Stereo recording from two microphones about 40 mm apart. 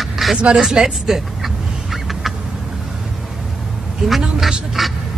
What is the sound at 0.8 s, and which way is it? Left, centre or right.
Duck, centre.